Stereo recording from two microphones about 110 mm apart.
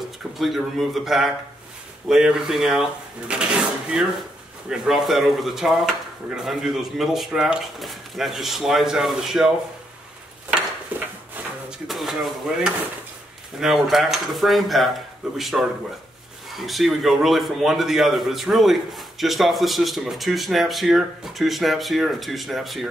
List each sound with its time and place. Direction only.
0.4 s a man's voice: centre (ahead or behind)
10.9 s a sound: 15° right (ahead or behind)
11.9 s a man's voice: centre (ahead or behind)